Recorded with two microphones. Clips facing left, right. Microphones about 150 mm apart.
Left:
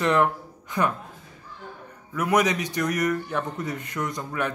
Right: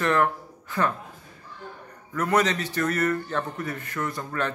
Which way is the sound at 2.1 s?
10° left (ahead or behind).